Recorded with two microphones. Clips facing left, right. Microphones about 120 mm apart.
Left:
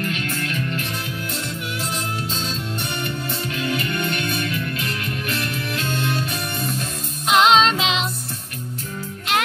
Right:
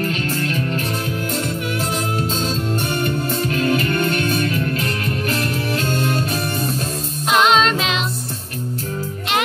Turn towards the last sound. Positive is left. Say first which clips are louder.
# even
turn(degrees=20)  # may be behind; listen again after turning